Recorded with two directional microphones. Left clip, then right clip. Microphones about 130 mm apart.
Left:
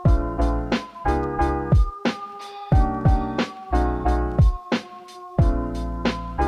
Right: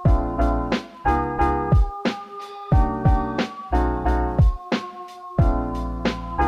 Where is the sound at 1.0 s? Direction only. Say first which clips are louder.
Right 3 dB; 15° right (ahead or behind).